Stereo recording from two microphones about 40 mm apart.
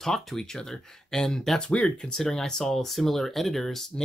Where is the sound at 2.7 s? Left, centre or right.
Centre.